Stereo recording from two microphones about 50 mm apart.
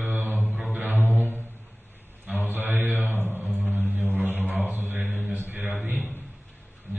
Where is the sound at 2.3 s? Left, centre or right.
Right.